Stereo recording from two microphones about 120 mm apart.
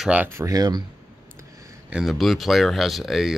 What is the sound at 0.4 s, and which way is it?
Speech, 30° right (ahead or behind).